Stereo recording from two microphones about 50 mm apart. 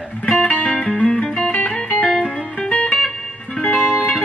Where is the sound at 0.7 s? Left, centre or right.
Centre.